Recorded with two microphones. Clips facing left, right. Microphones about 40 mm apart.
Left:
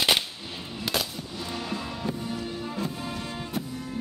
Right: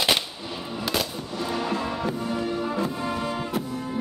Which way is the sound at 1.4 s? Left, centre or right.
Centre.